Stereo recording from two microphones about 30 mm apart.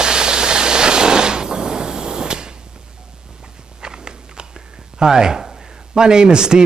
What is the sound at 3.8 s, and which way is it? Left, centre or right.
Biting, right.